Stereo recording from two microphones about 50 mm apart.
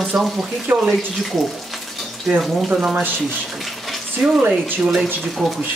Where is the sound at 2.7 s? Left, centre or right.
Right.